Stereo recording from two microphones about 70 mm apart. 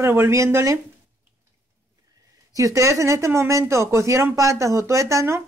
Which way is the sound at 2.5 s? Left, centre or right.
Right.